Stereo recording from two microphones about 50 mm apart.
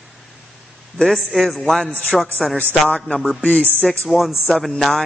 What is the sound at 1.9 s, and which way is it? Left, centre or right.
Speech, left.